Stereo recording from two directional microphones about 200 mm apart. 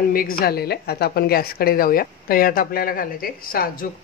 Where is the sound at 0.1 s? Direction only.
45° left (ahead or behind).